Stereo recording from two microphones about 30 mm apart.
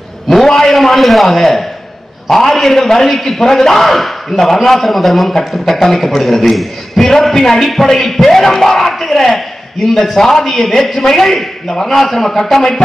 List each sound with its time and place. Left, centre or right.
0.5 s a man's voice: centre
0.7 s a man's voice: centre
6.5 s a man's voice: centre
7.1 s a man's voice: centre